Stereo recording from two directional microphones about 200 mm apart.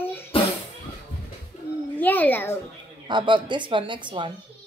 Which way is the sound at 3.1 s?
25° right (ahead or behind).